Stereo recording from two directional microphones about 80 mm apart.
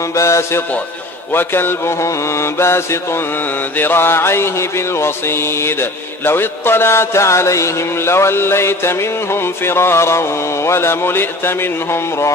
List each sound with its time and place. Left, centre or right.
0.1 s music: left